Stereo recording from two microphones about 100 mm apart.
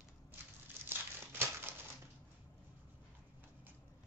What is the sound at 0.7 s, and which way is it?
Crumpling, 20° right (ahead or behind).